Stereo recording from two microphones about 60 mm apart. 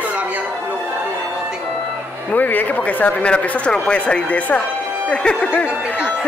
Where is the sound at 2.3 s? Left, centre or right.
Left.